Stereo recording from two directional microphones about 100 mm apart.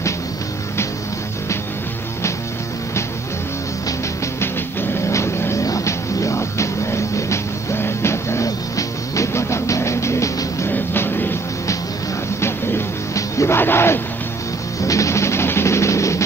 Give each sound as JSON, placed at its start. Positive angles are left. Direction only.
{"t": 5.0, "sound": "music", "side_deg": 30}
{"t": 12.4, "sound": "music", "side_deg": 25}